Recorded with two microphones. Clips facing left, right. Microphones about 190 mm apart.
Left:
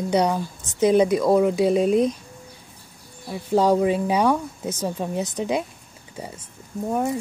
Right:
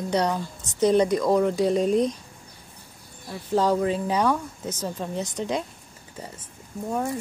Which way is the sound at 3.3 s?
10° left (ahead or behind).